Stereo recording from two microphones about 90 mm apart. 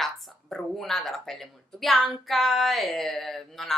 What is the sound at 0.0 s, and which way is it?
Speech, 5° left (ahead or behind).